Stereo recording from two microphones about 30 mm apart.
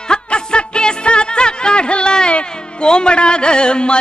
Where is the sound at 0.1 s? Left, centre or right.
Left.